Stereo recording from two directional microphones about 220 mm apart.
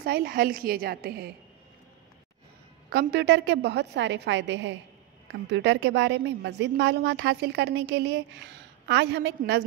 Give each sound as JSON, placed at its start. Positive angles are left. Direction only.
{"t": 0.0, "sound": "a woman's voice", "side_deg": -45}
{"t": 2.9, "sound": "a woman's voice", "side_deg": -50}